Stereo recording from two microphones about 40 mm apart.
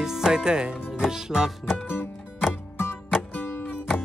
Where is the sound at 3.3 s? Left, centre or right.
Left.